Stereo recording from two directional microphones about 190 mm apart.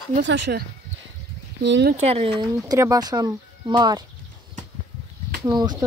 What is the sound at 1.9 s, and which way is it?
Speech, 30° right (ahead or behind).